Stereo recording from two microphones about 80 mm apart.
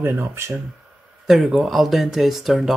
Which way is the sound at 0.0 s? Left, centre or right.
Right.